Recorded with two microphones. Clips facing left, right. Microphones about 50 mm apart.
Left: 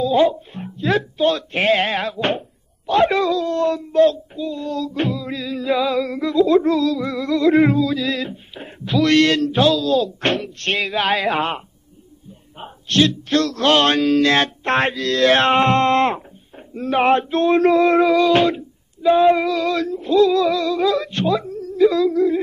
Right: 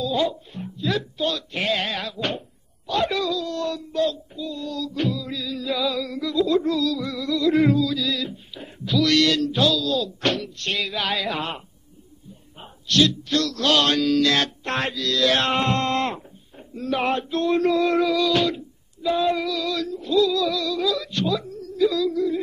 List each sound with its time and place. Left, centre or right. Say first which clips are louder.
0.0 s child singing: left 7 dB; left
10.8 s speech: left 6 dB; centre
11.2 s child singing: left 7 dB; left